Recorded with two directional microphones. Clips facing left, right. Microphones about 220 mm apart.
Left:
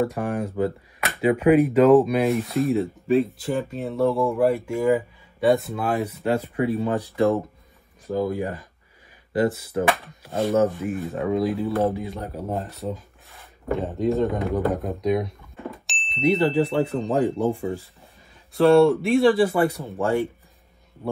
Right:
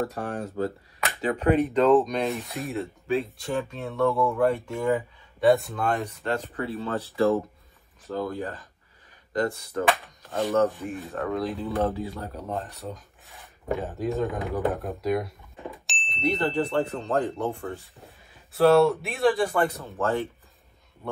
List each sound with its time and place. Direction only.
0.0 s speech: 10° left (ahead or behind)
2.4 s speech: centre (ahead or behind)
10.2 s speech: 15° left (ahead or behind)
11.0 s speech: centre (ahead or behind)
11.8 s speech: 15° left (ahead or behind)
12.1 s speech: 25° left (ahead or behind)
12.5 s speech: centre (ahead or behind)
15.7 s a sound: centre (ahead or behind)
16.2 s speech: 10° left (ahead or behind)